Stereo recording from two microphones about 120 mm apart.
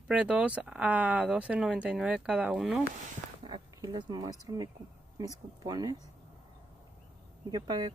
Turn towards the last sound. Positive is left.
turn(degrees=-35)  # may be behind; listen again after turning